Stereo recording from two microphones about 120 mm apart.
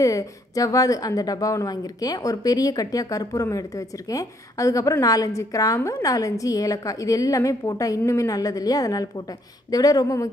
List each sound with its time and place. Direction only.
0.0 s a woman's voice: 30° left (ahead or behind)
6.0 s a woman's voice: 30° left (ahead or behind)